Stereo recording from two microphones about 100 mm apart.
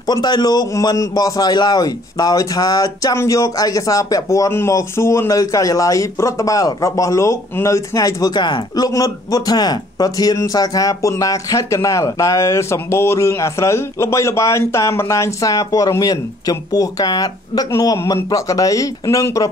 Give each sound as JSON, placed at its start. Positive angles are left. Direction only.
{"t": 0.0, "sound": "a man's voice", "side_deg": 45}